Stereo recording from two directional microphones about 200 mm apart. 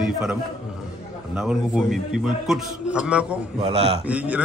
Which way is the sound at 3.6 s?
30° right (ahead or behind).